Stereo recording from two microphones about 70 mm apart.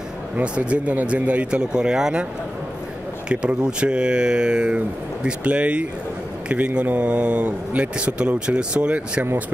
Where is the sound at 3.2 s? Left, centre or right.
Centre.